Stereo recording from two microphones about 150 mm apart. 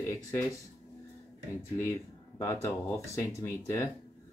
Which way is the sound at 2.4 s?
15° left (ahead or behind).